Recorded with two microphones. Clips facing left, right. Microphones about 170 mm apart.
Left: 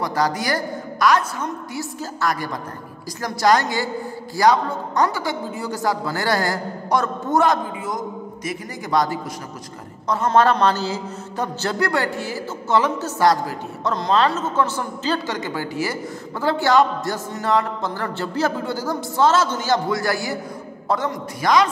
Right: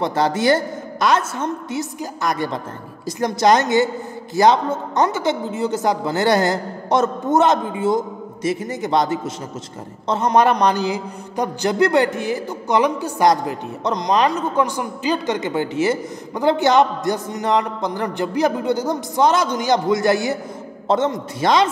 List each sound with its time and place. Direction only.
0.0 s a man's voice: 25° right (ahead or behind)